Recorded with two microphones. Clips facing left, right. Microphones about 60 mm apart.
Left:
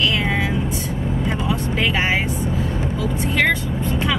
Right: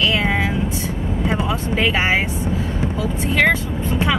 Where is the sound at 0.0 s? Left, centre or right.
Centre.